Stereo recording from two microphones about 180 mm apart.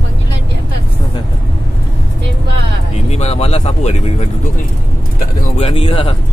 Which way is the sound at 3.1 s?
35° left (ahead or behind).